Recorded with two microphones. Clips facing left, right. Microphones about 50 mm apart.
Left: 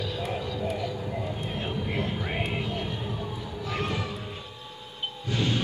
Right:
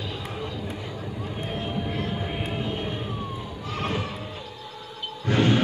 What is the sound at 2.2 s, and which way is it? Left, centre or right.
Music, left.